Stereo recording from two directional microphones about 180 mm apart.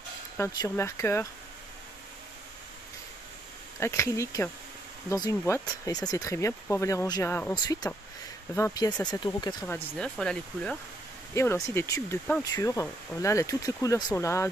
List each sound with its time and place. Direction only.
0.4 s speech: 15° left (ahead or behind)
3.8 s speech: 15° left (ahead or behind)
5.9 s speech: 20° left (ahead or behind)
7.5 s speech: 25° left (ahead or behind)
9.7 s speech: 5° left (ahead or behind)